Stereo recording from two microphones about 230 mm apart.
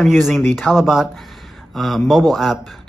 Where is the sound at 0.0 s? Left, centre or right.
Centre.